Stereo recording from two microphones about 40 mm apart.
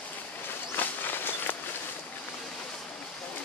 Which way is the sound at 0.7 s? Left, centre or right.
Left.